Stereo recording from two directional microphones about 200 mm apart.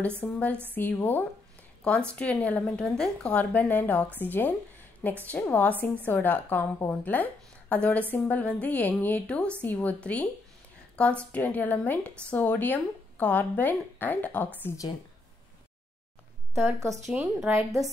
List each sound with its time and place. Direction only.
0.2 s a woman's voice: 5° left (ahead or behind)
16.5 s a woman's voice: 15° right (ahead or behind)